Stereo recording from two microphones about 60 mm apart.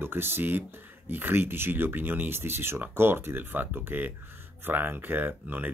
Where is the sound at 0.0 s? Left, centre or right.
Right.